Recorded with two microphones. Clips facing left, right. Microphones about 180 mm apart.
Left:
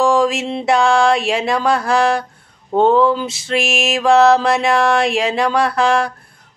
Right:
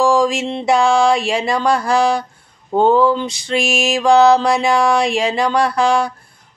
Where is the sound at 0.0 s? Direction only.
Centre (ahead or behind).